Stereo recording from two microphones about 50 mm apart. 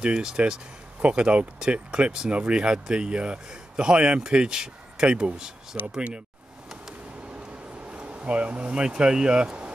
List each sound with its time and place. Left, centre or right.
0.0 s speech: centre
7.9 s speech: right